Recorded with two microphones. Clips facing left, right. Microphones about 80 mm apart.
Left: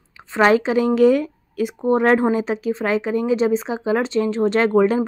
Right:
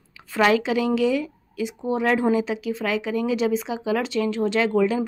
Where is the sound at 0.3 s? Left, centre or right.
Left.